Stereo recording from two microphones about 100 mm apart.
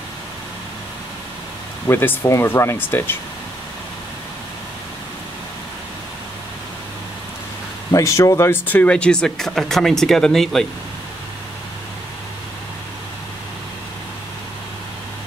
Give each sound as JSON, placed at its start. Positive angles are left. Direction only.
{"t": 1.9, "sound": "speech", "side_deg": 25}
{"t": 7.9, "sound": "speech", "side_deg": 30}